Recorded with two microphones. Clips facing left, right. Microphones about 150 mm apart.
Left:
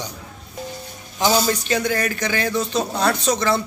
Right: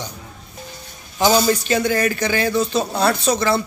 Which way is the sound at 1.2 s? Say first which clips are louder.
Right 3 dB; 5° right (ahead or behind).